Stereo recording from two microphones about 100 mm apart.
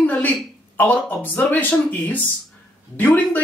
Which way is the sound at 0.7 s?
15° left (ahead or behind).